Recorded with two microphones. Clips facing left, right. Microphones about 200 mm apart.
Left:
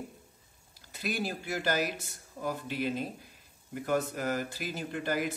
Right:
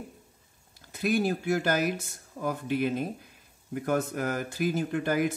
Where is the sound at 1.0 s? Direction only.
50° right (ahead or behind).